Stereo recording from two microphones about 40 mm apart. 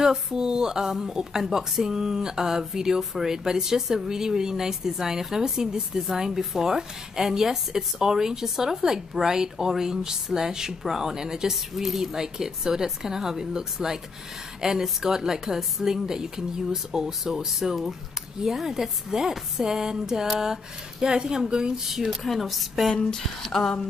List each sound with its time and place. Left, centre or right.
0.0 s a woman's voice: centre
11.5 s a woman's voice: centre
22.0 s speech: centre
23.1 s a sound: centre